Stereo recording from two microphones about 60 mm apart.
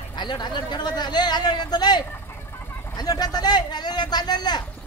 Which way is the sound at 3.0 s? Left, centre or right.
Left.